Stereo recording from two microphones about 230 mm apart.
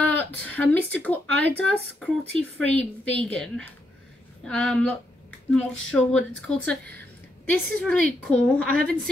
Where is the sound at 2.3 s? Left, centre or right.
Centre.